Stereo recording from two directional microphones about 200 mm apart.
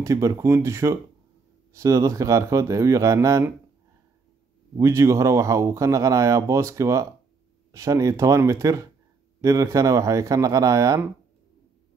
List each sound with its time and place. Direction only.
0.0 s speech: 15° right (ahead or behind)
4.7 s speech: 15° right (ahead or behind)